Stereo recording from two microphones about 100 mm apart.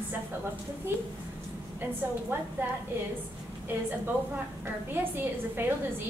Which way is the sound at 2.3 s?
25° right (ahead or behind).